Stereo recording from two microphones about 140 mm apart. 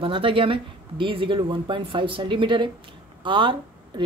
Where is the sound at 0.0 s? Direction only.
40° right (ahead or behind).